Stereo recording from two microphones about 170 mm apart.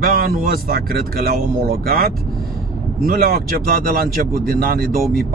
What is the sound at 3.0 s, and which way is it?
Speech, 65° right (ahead or behind).